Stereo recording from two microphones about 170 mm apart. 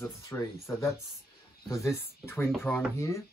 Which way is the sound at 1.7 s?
15° left (ahead or behind).